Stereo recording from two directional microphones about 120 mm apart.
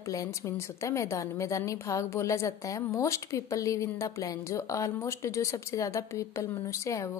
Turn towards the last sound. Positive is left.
turn(degrees=25)  # may be behind; listen again after turning